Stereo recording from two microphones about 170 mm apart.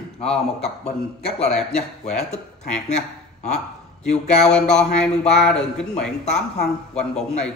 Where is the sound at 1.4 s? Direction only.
40° left (ahead or behind).